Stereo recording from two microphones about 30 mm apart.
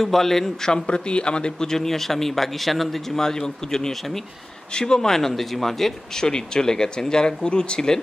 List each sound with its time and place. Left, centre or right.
0.0 s speech: centre
0.8 s speech: left
1.7 s speech: centre
3.2 s speech: centre
3.9 s speech: centre
4.7 s speech: left
5.3 s speech: centre
6.1 s speech: left